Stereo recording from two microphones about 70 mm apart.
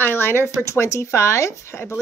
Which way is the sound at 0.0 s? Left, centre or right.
Left.